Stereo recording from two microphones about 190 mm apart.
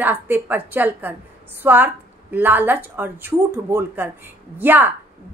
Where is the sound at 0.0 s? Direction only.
10° right (ahead or behind).